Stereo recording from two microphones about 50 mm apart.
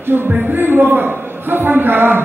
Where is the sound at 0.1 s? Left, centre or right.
Right.